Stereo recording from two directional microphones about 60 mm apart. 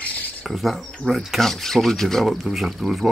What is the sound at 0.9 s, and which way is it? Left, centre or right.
Speech, centre.